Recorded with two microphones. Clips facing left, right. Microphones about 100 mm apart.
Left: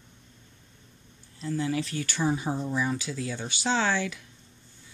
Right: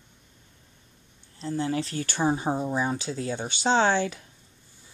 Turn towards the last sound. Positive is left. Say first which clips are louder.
# right 4 dB
turn(degrees=-30)  # may be behind; listen again after turning